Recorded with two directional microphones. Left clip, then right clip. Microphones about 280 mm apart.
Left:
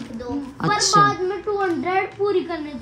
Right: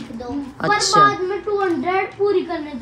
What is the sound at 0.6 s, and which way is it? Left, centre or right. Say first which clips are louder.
Speech: right 3 dB; left.